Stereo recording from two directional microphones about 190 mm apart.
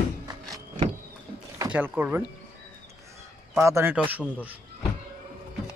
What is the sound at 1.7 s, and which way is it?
Speech, 10° right (ahead or behind).